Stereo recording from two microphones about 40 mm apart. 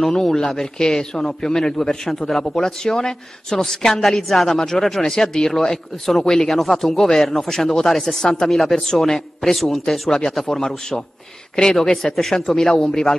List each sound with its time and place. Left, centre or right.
0.1 s a man's voice: centre
8.5 s a man's voice: centre